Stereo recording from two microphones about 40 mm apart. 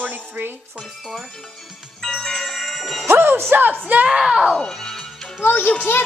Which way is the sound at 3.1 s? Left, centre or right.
Right.